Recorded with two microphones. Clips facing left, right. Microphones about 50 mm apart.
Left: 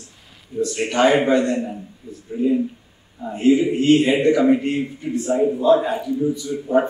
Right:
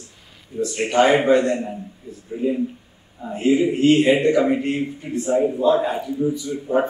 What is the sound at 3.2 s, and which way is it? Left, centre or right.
A man's voice, centre.